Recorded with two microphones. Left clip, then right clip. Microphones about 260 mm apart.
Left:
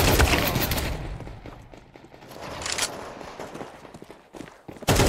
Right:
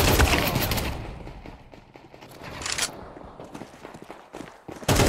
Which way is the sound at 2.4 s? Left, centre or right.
Centre.